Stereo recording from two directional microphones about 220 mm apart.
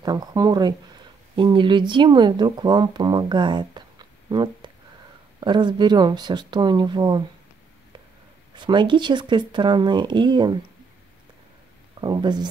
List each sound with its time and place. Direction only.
0.0 s speech: 15° right (ahead or behind)
8.5 s speech: 20° right (ahead or behind)
12.0 s speech: 20° right (ahead or behind)